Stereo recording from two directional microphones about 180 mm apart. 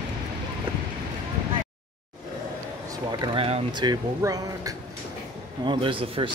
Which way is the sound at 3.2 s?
30° right (ahead or behind).